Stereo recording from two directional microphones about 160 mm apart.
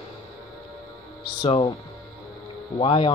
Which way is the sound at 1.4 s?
35° left (ahead or behind).